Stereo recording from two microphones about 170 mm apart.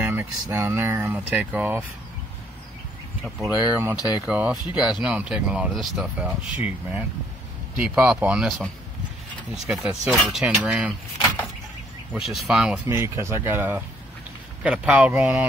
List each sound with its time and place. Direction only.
0.0 s a sound: 15° right (ahead or behind)
0.5 s speech: 15° right (ahead or behind)
3.6 s speech: 10° right (ahead or behind)
12.1 s speech: centre (ahead or behind)
12.8 s speech: 15° right (ahead or behind)